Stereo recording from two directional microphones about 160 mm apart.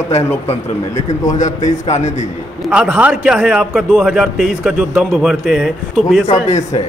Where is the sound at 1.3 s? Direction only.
50° left (ahead or behind).